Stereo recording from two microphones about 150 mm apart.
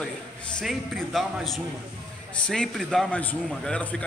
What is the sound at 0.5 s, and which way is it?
A man's voice, centre (ahead or behind).